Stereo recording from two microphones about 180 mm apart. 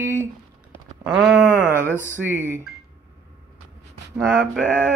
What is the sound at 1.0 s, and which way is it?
Speech, 5° right (ahead or behind).